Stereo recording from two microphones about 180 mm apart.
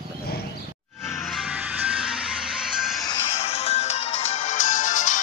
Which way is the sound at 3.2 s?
35° left (ahead or behind).